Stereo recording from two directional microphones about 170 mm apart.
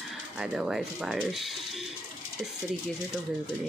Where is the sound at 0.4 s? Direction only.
5° right (ahead or behind).